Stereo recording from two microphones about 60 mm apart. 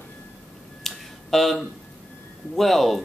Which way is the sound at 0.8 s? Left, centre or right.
Centre.